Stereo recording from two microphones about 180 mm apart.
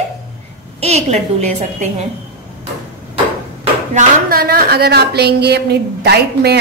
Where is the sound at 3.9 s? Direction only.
55° right (ahead or behind).